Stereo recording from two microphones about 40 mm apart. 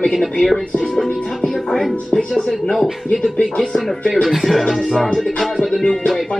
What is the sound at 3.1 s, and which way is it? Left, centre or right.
Speech, left.